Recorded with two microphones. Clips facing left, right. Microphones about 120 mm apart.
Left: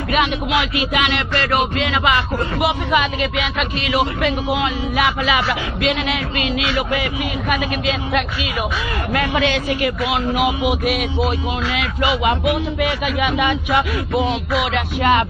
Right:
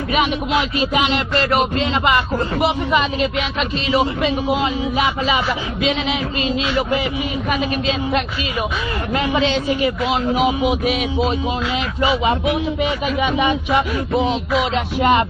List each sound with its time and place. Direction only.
0.7 s speech: 30° right (ahead or behind)
3.5 s speech: 30° right (ahead or behind)
5.8 s speech: 60° left (ahead or behind)
6.4 s speech: 30° right (ahead or behind)
9.1 s music: 25° right (ahead or behind)
10.7 s music: 5° left (ahead or behind)
11.2 s speech: 35° right (ahead or behind)
14.5 s music: 30° right (ahead or behind)